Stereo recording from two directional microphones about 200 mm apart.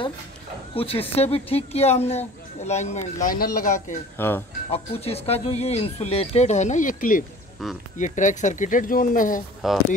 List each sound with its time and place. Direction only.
0.7 s speech: 30° left (ahead or behind)
3.3 s speech: 45° left (ahead or behind)
4.2 s speech: 10° left (ahead or behind)
4.6 s speech: 30° left (ahead or behind)
9.6 s speech: centre (ahead or behind)